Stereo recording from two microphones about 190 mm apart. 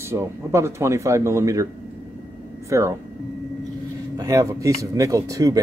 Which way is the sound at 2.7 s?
15° right (ahead or behind).